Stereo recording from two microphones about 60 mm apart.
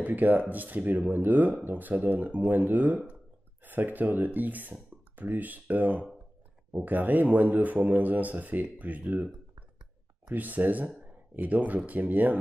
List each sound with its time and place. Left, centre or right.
0.0 s speech: right
10.3 s speech: right